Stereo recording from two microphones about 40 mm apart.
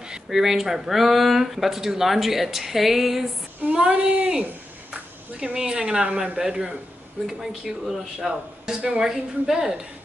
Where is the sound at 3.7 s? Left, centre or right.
Right.